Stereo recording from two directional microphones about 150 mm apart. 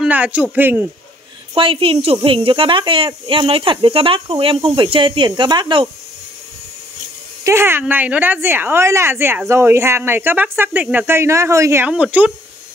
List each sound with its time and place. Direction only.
0.0 s speech: 10° right (ahead or behind)
1.5 s speech: 35° right (ahead or behind)
7.4 s speech: 15° right (ahead or behind)